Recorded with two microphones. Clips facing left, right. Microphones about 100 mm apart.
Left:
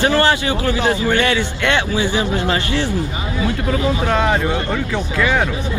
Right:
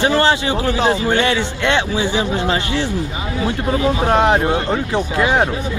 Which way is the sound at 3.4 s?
30° right (ahead or behind).